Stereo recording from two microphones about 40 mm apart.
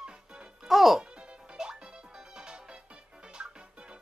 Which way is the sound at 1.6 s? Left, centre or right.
Centre.